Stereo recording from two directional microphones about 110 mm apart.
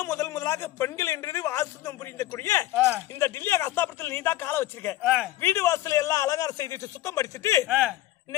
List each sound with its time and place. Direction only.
0.0 s a man's voice: 25° left (ahead or behind)
2.7 s speech: 10° right (ahead or behind)
3.2 s a man's voice: 25° left (ahead or behind)
5.0 s speech: 5° right (ahead or behind)
5.4 s a man's voice: 25° left (ahead or behind)
7.6 s speech: 10° right (ahead or behind)